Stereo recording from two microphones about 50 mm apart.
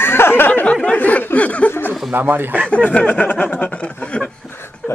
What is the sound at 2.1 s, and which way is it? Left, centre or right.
Speech, right.